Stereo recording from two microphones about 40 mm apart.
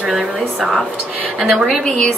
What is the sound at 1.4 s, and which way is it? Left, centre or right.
Speech, centre.